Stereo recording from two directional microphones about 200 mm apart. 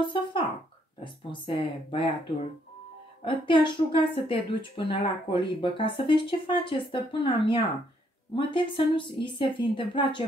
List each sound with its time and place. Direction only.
0.0 s a woman's voice: 25° left (ahead or behind)
3.3 s a woman's voice: 25° left (ahead or behind)